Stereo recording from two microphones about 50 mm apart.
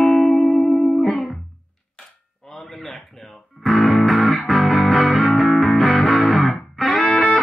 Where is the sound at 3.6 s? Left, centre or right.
Centre.